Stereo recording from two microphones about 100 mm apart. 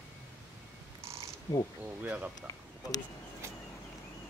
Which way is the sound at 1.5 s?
30° left (ahead or behind).